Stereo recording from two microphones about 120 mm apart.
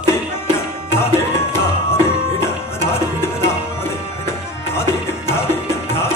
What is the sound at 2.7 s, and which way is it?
Music, 20° left (ahead or behind).